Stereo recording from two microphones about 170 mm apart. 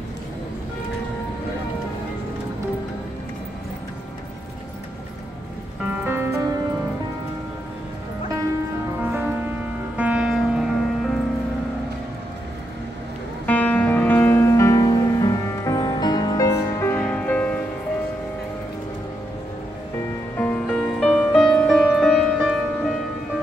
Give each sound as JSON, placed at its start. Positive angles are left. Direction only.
{"t": 6.0, "sound": "music", "side_deg": -15}
{"t": 9.0, "sound": "music", "side_deg": -10}
{"t": 13.5, "sound": "music", "side_deg": 10}
{"t": 20.3, "sound": "music", "side_deg": 10}